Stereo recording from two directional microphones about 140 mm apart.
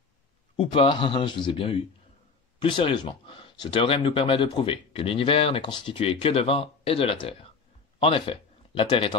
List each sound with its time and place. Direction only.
0.6 s a man's voice: 40° left (ahead or behind)